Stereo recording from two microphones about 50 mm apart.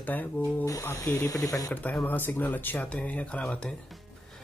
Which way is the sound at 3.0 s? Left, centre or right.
Left.